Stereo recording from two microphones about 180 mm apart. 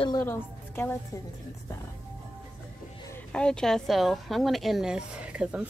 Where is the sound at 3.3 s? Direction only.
5° left (ahead or behind).